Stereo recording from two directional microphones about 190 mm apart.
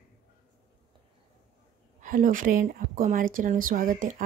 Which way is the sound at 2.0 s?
45° right (ahead or behind).